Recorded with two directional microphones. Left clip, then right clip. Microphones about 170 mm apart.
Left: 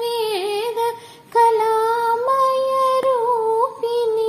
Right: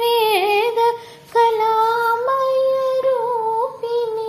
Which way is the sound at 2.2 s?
20° left (ahead or behind).